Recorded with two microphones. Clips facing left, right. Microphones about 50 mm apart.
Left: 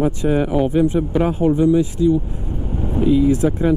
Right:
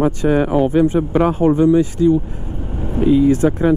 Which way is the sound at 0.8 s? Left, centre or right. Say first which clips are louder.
Right 3 dB; right.